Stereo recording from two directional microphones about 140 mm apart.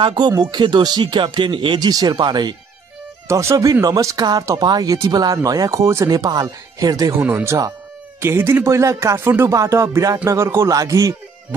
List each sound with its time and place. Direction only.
0.0 s speech: 30° right (ahead or behind)
3.3 s speech: 20° right (ahead or behind)
7.2 s speech: 15° right (ahead or behind)